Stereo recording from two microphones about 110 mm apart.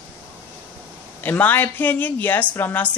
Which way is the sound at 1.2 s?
15° left (ahead or behind).